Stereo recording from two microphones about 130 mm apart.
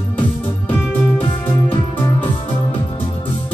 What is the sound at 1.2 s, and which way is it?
Music, 40° left (ahead or behind).